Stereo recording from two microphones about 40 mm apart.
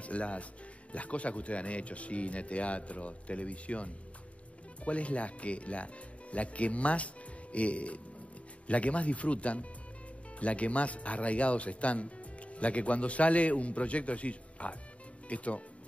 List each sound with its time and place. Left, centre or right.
0.0 s speech: left